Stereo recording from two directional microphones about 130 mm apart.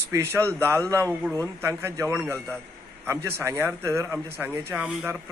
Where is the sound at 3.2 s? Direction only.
20° right (ahead or behind).